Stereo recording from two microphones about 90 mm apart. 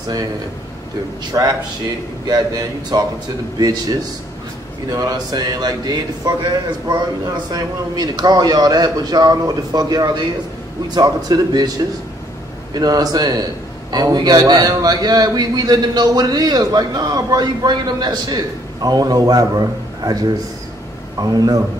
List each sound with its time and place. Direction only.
1.3 s a man's voice: 45° right (ahead or behind)
4.9 s a man's voice: 45° right (ahead or behind)
12.7 s a man's voice: 45° right (ahead or behind)